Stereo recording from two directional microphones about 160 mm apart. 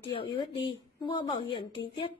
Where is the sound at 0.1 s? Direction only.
35° left (ahead or behind).